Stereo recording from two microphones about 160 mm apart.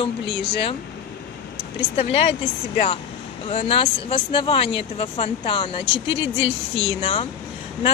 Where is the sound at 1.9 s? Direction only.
40° left (ahead or behind).